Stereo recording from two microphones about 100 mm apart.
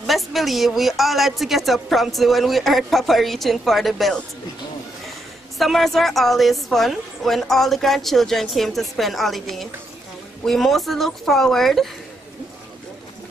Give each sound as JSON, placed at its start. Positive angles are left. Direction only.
{"t": 0.0, "sound": "speech", "side_deg": 0}
{"t": 5.6, "sound": "speech", "side_deg": 0}